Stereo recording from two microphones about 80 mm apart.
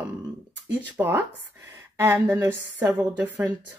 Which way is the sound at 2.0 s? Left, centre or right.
Right.